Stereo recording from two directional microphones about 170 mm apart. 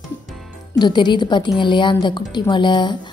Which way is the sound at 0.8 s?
25° left (ahead or behind).